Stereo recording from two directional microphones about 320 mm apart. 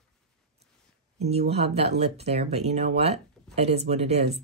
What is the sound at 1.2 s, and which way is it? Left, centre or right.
Speech, centre.